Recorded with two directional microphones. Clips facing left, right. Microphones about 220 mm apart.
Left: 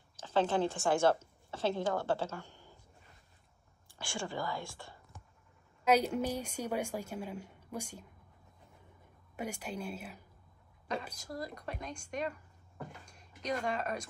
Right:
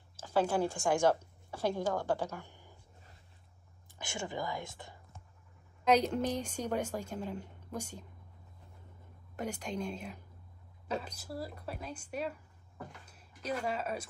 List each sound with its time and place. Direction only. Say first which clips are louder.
0.1 s a woman's voice: even; 10° right (ahead or behind)
4.0 s a woman's voice: even; 20° right (ahead or behind)
5.9 s a woman's voice: right 1 dB; 10° left (ahead or behind)
9.4 s a woman's voice: right 2 dB; 10° left (ahead or behind)
11.1 s speech: even; 5° right (ahead or behind)